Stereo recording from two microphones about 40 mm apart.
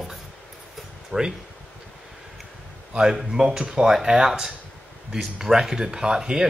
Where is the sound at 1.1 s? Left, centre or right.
Right.